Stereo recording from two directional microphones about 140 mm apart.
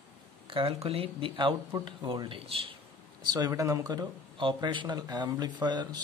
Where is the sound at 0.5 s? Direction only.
40° right (ahead or behind).